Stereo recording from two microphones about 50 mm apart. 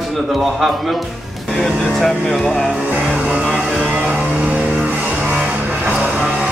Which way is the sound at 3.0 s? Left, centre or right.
Centre.